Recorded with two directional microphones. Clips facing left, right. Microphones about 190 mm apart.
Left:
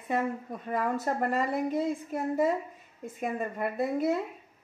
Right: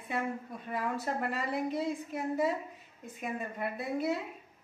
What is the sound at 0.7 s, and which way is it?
A woman's voice, 50° left (ahead or behind).